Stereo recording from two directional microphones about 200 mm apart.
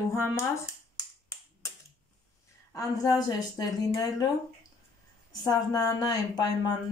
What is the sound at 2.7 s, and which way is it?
Speech, 15° left (ahead or behind).